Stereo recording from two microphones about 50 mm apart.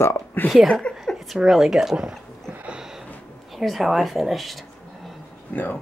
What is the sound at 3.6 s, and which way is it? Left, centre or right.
Speech, centre.